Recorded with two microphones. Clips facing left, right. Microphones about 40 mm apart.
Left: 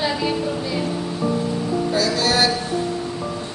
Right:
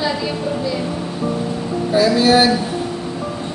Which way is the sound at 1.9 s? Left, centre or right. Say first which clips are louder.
Right 8 dB; centre.